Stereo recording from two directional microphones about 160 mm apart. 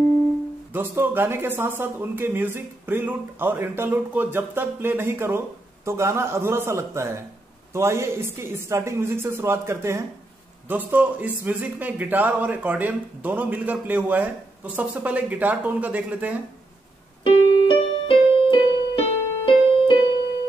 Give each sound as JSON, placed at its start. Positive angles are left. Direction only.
{"t": 0.7, "sound": "a man's voice", "side_deg": -15}
{"t": 17.2, "sound": "keyboard", "side_deg": 30}